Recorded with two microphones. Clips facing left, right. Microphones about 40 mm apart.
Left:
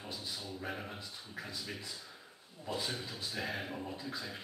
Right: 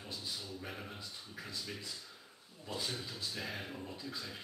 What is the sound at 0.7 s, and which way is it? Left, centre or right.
A man's voice, centre.